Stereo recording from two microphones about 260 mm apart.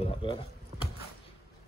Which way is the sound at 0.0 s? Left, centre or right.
Left.